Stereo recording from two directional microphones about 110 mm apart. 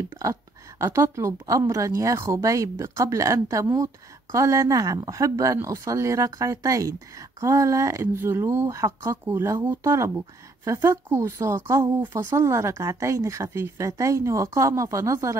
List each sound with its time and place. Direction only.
0.2 s a woman's voice: 30° right (ahead or behind)